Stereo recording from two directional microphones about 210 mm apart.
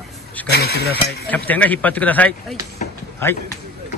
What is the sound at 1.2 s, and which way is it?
Speech, 5° left (ahead or behind).